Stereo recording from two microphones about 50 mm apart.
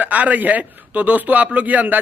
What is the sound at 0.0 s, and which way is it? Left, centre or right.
A man's voice, right.